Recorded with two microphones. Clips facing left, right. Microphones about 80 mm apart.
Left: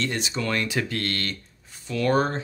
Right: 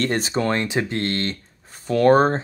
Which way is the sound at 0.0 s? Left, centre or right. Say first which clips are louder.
Right 6 dB; right.